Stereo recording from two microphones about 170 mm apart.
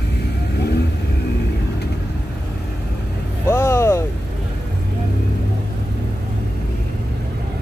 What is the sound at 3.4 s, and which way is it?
Vehicle, 15° left (ahead or behind).